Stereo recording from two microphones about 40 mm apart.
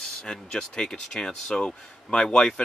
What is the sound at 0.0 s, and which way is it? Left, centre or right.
Speech, centre.